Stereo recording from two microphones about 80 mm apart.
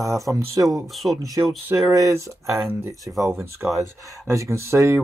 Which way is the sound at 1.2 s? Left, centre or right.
Right.